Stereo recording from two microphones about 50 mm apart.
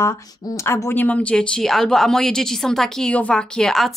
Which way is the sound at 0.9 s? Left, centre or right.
Left.